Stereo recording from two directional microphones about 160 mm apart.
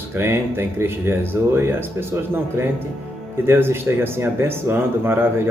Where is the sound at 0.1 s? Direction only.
15° right (ahead or behind).